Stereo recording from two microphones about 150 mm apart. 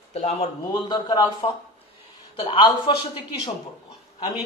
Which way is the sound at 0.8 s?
30° left (ahead or behind).